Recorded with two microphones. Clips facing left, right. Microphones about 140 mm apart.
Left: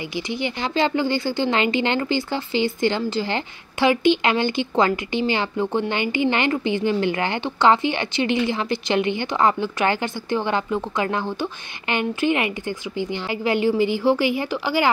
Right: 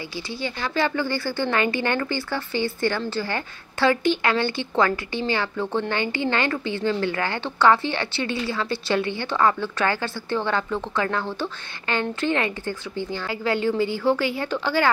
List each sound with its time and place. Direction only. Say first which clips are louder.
0.1 s a woman's voice: left 6 dB; 15° left (ahead or behind)